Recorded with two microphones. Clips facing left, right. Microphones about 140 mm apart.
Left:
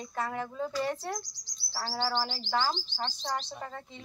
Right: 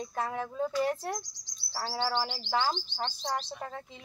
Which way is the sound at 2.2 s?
5° right (ahead or behind).